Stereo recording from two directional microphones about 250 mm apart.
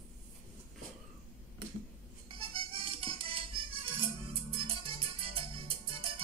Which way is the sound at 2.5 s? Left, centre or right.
Right.